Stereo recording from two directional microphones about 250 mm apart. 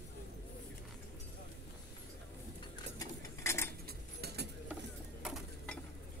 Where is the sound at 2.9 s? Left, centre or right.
Centre.